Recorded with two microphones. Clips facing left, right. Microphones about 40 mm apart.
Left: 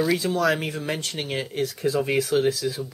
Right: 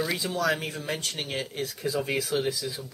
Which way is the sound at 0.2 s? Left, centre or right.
Centre.